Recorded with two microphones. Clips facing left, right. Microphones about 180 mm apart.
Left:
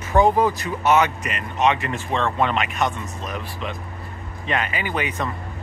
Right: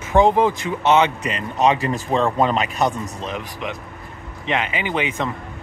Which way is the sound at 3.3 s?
15° right (ahead or behind).